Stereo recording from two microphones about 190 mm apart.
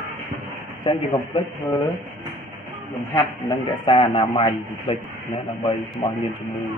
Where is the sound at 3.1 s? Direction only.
25° left (ahead or behind).